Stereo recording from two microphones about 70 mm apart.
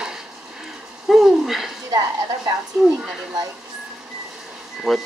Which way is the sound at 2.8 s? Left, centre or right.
Centre.